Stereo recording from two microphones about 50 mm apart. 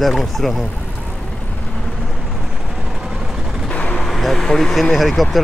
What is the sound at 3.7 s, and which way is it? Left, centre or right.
Vehicle, left.